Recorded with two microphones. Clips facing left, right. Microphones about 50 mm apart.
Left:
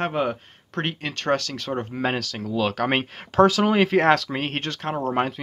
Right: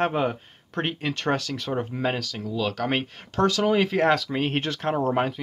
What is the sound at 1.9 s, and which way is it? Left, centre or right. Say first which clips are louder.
Speech: left 3 dB; centre.